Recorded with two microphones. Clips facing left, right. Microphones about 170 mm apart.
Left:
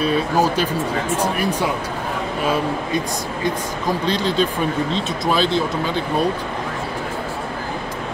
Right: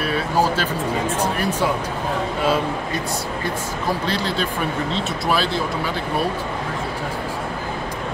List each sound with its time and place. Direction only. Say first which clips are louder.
0.0 s speech: left 2 dB; 15° left (ahead or behind)
4.1 s speech: left 4 dB; 20° left (ahead or behind)